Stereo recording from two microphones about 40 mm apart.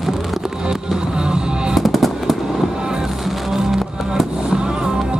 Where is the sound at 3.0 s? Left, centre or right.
Centre.